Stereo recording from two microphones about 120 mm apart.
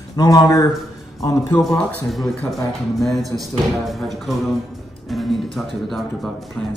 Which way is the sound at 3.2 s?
30° right (ahead or behind).